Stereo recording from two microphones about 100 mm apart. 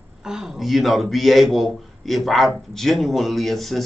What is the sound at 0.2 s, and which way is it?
Speech, 5° right (ahead or behind).